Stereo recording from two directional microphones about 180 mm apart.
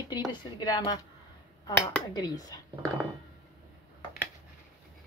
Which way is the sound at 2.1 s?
20° left (ahead or behind).